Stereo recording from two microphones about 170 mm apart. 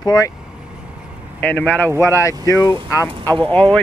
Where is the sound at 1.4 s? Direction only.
10° left (ahead or behind).